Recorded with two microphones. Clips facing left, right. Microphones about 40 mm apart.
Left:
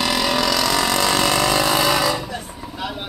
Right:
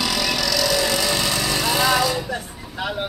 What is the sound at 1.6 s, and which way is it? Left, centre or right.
Jackhammer, centre.